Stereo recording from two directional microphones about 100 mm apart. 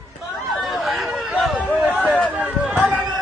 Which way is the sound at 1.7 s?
15° right (ahead or behind).